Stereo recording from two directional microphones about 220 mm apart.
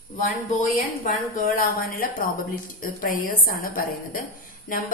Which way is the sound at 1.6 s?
40° left (ahead or behind).